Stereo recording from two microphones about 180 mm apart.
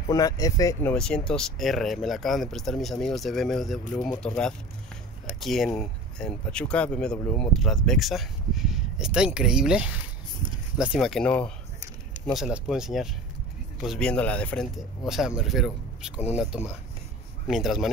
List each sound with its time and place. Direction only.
0.1 s speech: 20° left (ahead or behind)
0.9 s speech: 5° left (ahead or behind)